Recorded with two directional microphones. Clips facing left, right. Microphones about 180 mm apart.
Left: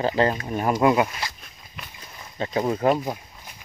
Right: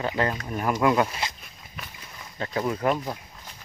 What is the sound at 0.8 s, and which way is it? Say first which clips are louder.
Speech: left 2 dB; 15° left (ahead or behind).